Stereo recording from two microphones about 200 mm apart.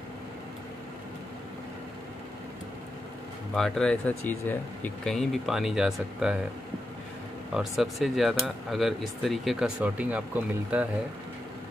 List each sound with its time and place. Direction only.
3.5 s speech: centre (ahead or behind)
7.5 s speech: centre (ahead or behind)